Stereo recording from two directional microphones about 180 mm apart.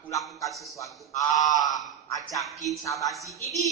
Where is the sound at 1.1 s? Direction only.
20° left (ahead or behind).